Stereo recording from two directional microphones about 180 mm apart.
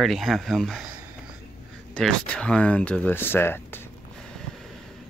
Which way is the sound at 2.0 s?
5° left (ahead or behind).